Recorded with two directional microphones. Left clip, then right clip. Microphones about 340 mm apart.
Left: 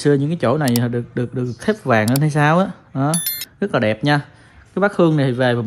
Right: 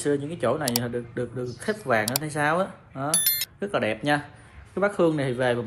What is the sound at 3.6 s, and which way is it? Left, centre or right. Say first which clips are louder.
Speech: left 10 dB; left.